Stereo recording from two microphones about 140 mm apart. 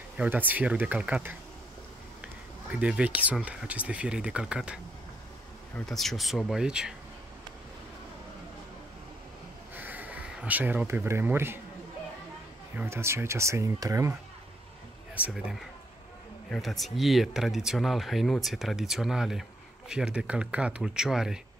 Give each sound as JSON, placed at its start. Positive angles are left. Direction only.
{"t": 0.2, "sound": "speech", "side_deg": -10}
{"t": 2.2, "sound": "a sound", "side_deg": -10}
{"t": 3.4, "sound": "speech", "side_deg": -10}
{"t": 5.8, "sound": "speech", "side_deg": 0}
{"t": 9.8, "sound": "speech", "side_deg": -10}
{"t": 12.7, "sound": "speech", "side_deg": -20}
{"t": 15.2, "sound": "speech", "side_deg": -10}
{"t": 16.4, "sound": "speech", "side_deg": 0}